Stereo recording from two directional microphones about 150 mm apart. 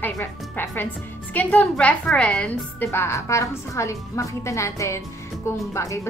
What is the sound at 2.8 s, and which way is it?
A woman's voice, 20° left (ahead or behind).